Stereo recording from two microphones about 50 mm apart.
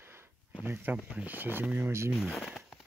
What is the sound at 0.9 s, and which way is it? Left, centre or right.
Speech, right.